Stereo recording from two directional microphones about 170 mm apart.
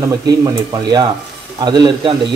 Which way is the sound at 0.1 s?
20° right (ahead or behind).